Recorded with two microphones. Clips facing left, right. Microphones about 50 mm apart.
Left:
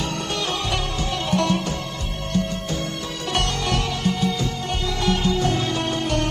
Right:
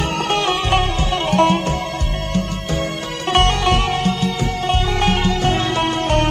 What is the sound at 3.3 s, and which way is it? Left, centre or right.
Music, right.